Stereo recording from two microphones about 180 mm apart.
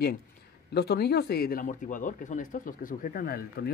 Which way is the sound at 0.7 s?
65° left (ahead or behind).